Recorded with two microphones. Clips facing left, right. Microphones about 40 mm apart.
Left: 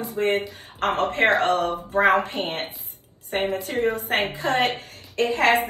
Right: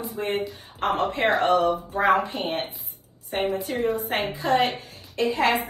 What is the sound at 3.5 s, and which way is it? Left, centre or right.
A woman's voice, left.